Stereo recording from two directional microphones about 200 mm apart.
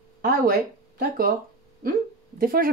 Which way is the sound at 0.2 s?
45° right (ahead or behind).